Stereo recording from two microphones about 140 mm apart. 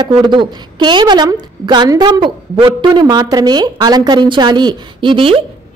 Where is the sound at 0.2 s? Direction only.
35° right (ahead or behind).